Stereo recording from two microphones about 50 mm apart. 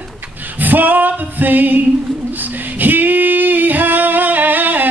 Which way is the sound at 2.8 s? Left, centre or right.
Right.